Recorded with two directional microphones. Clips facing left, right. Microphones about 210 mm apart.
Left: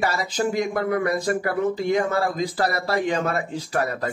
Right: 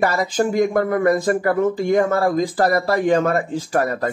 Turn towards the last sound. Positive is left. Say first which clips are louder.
# right 5 dB
turn(degrees=-45)  # may be behind; listen again after turning